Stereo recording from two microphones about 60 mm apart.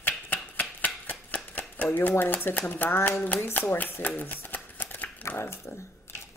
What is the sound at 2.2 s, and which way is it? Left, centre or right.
Speech, left.